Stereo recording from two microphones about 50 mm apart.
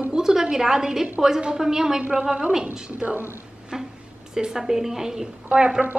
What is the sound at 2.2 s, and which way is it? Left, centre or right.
Speech, right.